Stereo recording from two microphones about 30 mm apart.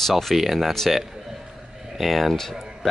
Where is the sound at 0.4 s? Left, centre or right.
Centre.